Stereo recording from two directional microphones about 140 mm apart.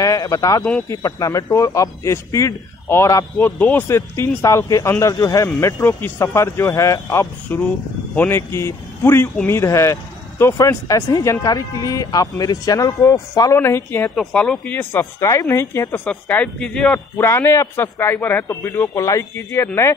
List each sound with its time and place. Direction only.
0.0 s speech: 25° left (ahead or behind)
14.1 s speech: 5° left (ahead or behind)
17.2 s speech: 20° left (ahead or behind)